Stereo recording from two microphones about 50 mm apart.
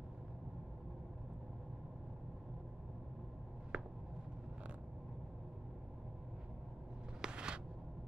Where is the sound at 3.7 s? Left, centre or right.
Right.